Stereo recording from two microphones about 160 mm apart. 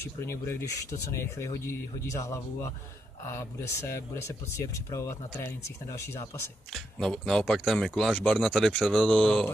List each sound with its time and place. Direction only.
0.3 s speech: 15° left (ahead or behind)
6.7 s speech: 5° left (ahead or behind)